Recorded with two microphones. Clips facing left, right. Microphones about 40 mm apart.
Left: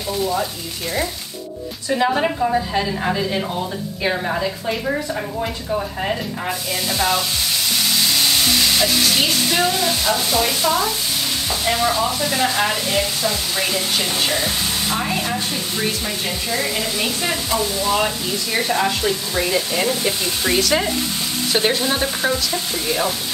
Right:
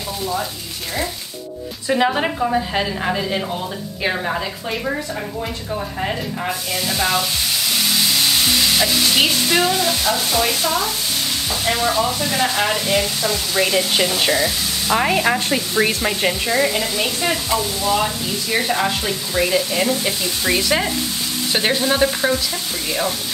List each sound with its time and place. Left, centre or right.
1.9 s stir: centre
4.0 s speech: centre
7.7 s stir: centre
9.6 s speech: centre
13.6 s stir: centre
14.9 s speech: right
16.3 s frying: centre
16.6 s speech: centre
20.4 s stir: centre
22.5 s speech: centre